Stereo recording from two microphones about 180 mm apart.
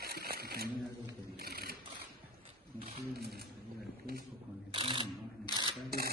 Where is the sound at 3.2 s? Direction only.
60° right (ahead or behind).